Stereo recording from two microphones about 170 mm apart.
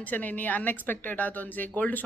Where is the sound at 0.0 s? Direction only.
10° left (ahead or behind).